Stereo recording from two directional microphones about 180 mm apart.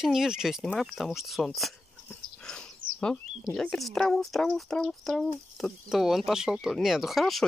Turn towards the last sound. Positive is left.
turn(degrees=0)  # may be behind; listen again after turning